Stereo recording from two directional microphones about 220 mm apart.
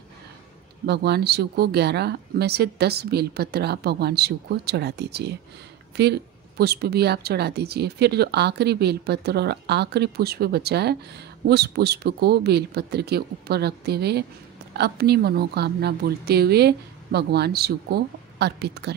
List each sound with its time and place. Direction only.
0.8 s a woman's voice: 50° right (ahead or behind)